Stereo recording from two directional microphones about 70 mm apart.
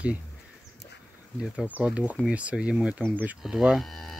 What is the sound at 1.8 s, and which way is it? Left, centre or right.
Speech, right.